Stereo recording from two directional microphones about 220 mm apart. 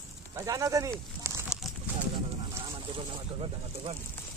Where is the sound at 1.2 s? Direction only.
10° right (ahead or behind).